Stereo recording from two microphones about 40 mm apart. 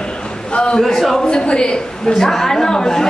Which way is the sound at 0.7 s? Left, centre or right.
Centre.